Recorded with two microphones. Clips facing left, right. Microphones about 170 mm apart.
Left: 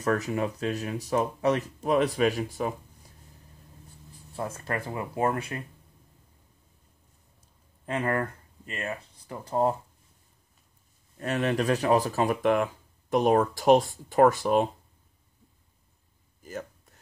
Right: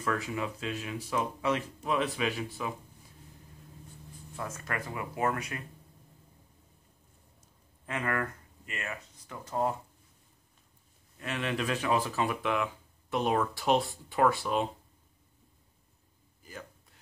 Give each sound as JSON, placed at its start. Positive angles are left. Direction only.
{"t": 0.0, "sound": "speech", "side_deg": 40}
{"t": 4.4, "sound": "speech", "side_deg": 30}
{"t": 7.8, "sound": "speech", "side_deg": 30}
{"t": 11.1, "sound": "speech", "side_deg": 40}
{"t": 16.4, "sound": "speech", "side_deg": 45}